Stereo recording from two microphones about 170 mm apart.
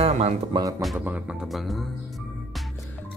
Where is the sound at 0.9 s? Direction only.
10° right (ahead or behind).